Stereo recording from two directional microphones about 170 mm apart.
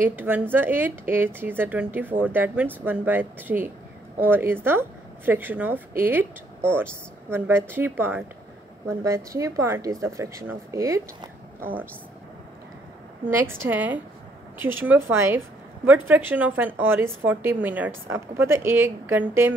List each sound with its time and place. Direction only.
0.0 s speech: 10° right (ahead or behind)
13.3 s a woman's voice: 15° right (ahead or behind)